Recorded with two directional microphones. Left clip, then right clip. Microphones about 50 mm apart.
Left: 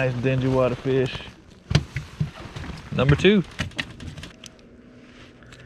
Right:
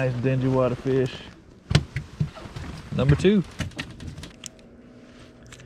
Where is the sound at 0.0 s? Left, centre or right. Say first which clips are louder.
Left 2 dB; centre.